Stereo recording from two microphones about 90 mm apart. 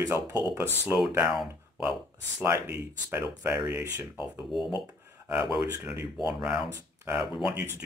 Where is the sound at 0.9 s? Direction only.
25° right (ahead or behind).